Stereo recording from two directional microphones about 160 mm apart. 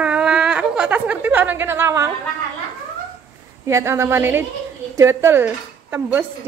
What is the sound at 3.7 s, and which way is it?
Speech, 15° right (ahead or behind).